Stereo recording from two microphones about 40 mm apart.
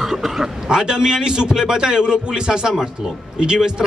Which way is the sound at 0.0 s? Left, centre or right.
Centre.